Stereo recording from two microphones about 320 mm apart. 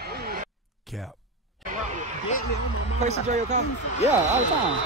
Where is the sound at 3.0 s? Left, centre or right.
Right.